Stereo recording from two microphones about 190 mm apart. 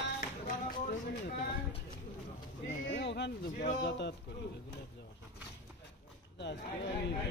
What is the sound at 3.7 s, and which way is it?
Speech, 65° left (ahead or behind).